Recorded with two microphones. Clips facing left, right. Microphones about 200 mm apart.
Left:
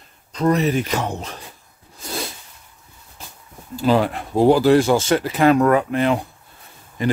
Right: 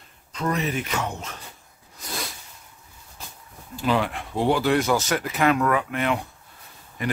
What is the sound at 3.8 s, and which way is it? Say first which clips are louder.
A man's voice: left 6 dB; 40° left (ahead or behind).